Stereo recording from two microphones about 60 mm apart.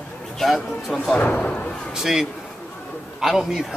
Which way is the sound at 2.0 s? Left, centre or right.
Centre.